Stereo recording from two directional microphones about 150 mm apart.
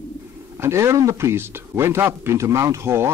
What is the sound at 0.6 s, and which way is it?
A man's voice, 15° right (ahead or behind).